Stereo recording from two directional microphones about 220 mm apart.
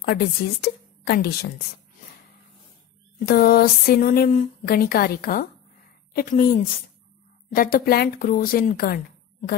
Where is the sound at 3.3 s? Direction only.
45° left (ahead or behind).